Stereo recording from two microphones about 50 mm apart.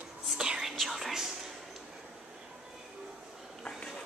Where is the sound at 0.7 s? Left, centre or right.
Centre.